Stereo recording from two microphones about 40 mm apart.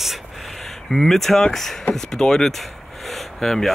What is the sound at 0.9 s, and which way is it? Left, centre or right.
Speech, centre.